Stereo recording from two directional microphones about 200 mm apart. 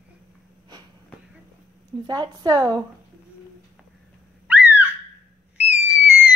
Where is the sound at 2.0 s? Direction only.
20° right (ahead or behind).